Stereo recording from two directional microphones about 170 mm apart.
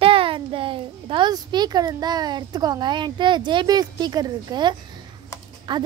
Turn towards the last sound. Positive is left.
turn(degrees=-25)  # may be behind; listen again after turning